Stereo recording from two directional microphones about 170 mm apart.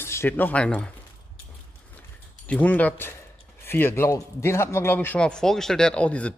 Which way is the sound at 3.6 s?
10° left (ahead or behind).